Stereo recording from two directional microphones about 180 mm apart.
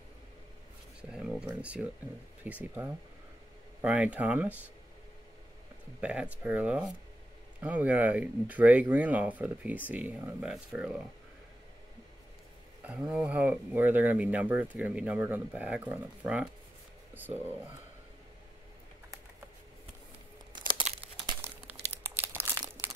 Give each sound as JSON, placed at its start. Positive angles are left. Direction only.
{"t": 1.1, "sound": "speech", "side_deg": -5}
{"t": 5.9, "sound": "speech", "side_deg": -5}
{"t": 12.8, "sound": "speech", "side_deg": -5}
{"t": 20.9, "sound": "crumpling", "side_deg": -40}
{"t": 21.3, "sound": "crumpling", "side_deg": -10}